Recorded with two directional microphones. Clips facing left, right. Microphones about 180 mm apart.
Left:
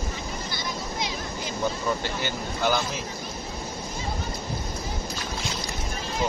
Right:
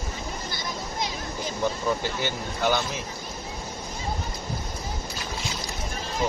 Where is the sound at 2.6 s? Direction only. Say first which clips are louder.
Even; centre (ahead or behind).